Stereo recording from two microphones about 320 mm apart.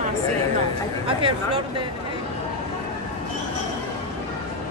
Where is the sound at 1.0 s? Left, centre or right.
Centre.